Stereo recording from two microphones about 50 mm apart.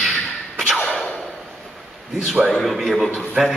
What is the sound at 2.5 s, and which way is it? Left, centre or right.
Speech, centre.